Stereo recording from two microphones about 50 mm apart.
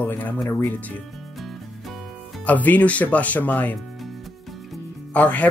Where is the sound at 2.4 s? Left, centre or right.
Left.